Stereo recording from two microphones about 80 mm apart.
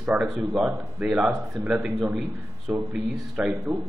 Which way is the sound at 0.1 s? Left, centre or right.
Centre.